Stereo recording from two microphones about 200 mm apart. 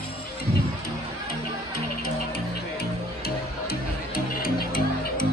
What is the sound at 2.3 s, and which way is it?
Music, 50° left (ahead or behind).